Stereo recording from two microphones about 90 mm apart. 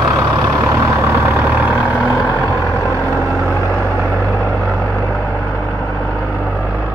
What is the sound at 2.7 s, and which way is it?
Vehicle, 30° left (ahead or behind).